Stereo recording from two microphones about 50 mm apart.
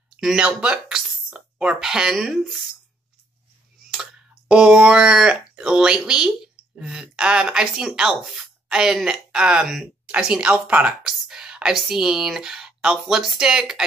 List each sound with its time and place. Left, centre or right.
0.2 s speech: right; by 2.8 s centre
4.5 s a woman's voice: centre
11.2 s whispering: centre
11.9 s speech: centre